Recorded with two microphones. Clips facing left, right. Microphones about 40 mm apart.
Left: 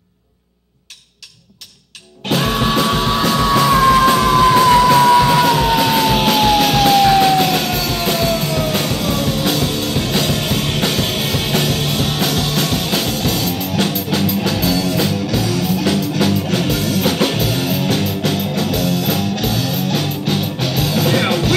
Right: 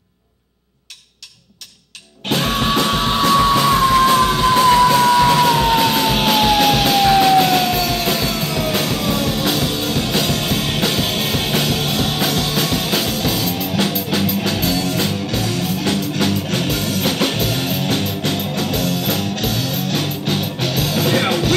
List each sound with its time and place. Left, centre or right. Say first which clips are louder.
2.2 s music: left 1 dB; centre
3.7 s music: left 2 dB; left
4.6 s music: right 2 dB; centre
5.2 s music: even; centre